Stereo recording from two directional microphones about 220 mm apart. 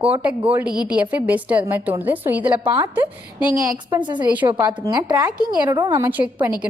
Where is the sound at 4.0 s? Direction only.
20° right (ahead or behind).